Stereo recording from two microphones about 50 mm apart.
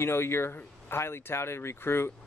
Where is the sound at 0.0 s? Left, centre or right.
Left.